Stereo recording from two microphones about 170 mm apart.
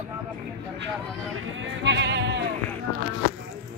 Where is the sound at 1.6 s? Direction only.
90° right.